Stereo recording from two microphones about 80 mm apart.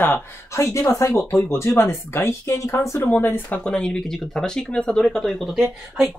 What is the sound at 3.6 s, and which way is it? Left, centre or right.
Speech, centre.